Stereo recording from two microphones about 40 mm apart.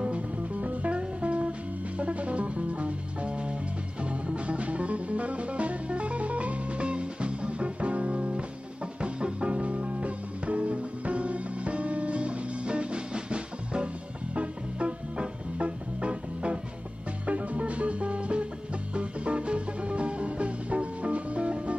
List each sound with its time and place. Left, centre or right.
0.0 s music: right